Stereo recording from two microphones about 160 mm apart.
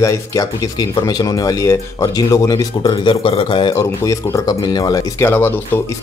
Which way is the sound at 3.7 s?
20° left (ahead or behind).